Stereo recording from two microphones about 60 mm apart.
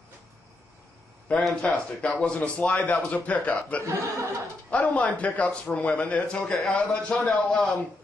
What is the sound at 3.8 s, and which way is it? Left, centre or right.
Speech, right.